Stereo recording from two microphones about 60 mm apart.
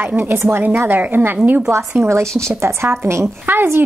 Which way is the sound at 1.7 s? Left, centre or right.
Right.